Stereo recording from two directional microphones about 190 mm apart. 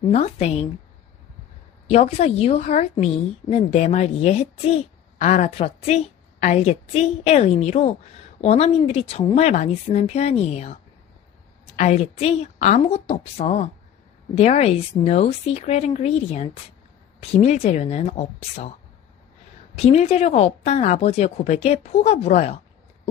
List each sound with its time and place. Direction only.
0.1 s speech: 35° left (ahead or behind)
1.9 s speech: 35° left (ahead or behind)
19.8 s speech: 35° left (ahead or behind)